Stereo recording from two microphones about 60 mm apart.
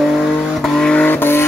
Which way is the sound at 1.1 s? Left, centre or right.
Left.